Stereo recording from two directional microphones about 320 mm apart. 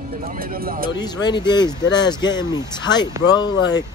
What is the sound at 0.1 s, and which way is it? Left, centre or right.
Speech, right.